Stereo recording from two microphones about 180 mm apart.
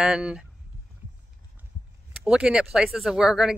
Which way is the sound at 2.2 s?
5° right (ahead or behind).